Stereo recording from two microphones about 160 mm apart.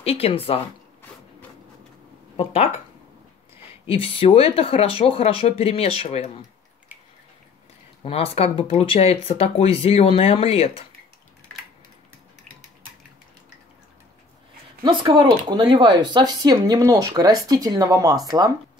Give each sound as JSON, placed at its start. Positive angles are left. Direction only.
{"t": 0.0, "sound": "speech", "side_deg": 40}
{"t": 2.3, "sound": "speech", "side_deg": 40}
{"t": 3.8, "sound": "speech", "side_deg": 35}
{"t": 8.0, "sound": "speech", "side_deg": 40}
{"t": 14.8, "sound": "speech", "side_deg": -30}